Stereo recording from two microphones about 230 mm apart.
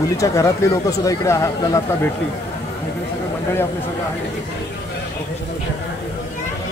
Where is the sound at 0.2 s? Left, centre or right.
Centre.